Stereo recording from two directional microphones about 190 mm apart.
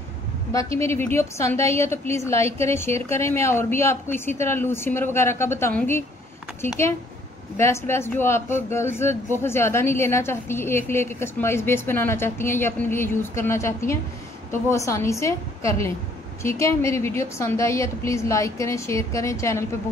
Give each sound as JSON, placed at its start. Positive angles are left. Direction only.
{"t": 0.5, "sound": "speech", "side_deg": 15}